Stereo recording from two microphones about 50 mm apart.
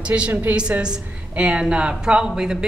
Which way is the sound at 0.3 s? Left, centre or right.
Right.